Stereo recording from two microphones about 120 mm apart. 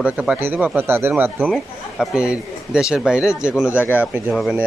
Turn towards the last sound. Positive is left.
turn(degrees=-5)  # may be behind; listen again after turning